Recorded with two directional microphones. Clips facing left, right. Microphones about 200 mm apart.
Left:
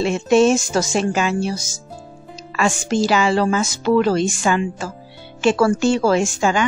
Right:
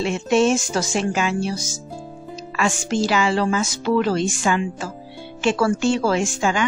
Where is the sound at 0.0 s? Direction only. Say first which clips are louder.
Left 4 dB; 40° left (ahead or behind).